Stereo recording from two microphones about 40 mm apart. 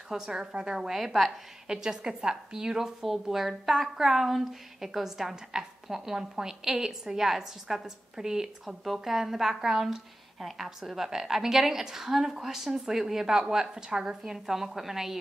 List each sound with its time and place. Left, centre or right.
0.1 s a woman's voice: centre
0.7 s a woman's voice: centre
1.7 s a woman's voice: centre